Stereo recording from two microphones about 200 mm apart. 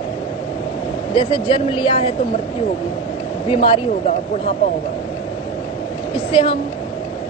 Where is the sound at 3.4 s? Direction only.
25° left (ahead or behind).